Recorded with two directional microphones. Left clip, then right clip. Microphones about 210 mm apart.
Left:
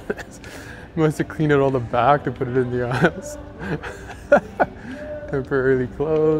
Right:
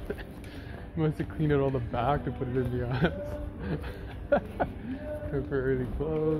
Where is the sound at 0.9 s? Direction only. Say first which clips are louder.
Left 11 dB; 55° left (ahead or behind).